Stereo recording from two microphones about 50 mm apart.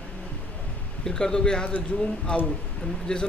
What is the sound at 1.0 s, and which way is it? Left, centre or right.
Speech, centre.